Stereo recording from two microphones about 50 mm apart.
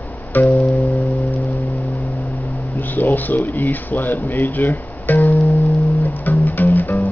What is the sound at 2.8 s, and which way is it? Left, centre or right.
Speech, left.